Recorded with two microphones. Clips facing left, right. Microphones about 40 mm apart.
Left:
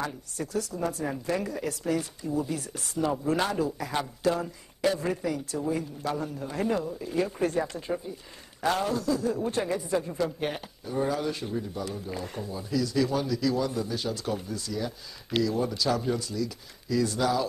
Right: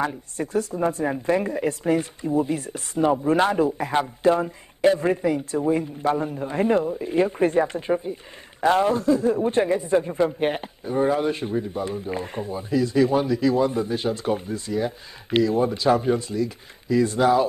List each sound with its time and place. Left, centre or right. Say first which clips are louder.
0.0 s speech: right 7 dB; right